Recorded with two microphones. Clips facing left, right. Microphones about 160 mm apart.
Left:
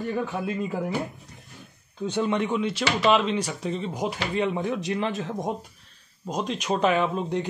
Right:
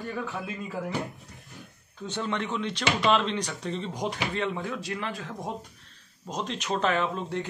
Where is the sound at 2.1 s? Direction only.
15° left (ahead or behind).